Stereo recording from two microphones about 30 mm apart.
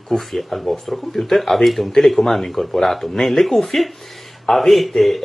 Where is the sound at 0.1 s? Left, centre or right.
Centre.